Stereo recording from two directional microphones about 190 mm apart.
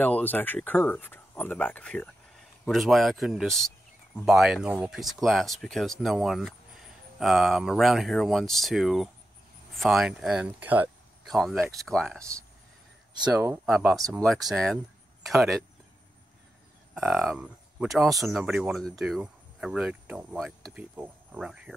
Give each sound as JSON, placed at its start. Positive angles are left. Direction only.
{"t": 0.0, "sound": "speech", "side_deg": 10}
{"t": 13.1, "sound": "speech", "side_deg": -20}
{"t": 13.7, "sound": "speech", "side_deg": -5}
{"t": 16.9, "sound": "speech", "side_deg": -5}